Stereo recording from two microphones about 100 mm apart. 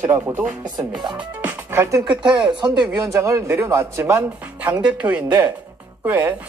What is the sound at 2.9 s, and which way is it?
A man's voice, 30° right (ahead or behind).